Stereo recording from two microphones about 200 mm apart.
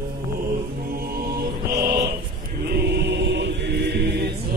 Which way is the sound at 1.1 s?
50° right (ahead or behind).